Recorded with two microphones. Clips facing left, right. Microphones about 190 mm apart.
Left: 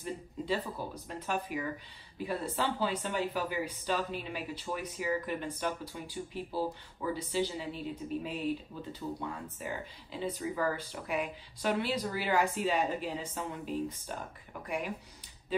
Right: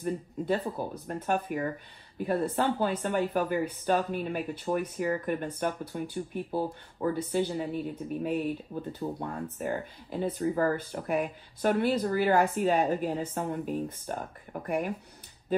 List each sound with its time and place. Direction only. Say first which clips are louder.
0.0 s speech: right 7 dB; 55° right (ahead or behind)
8.7 s speech: right 7 dB; 35° right (ahead or behind)
9.2 s speech: right 6 dB; 50° right (ahead or behind)